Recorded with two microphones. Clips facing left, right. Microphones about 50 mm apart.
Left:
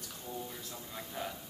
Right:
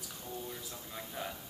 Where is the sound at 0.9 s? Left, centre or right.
Centre.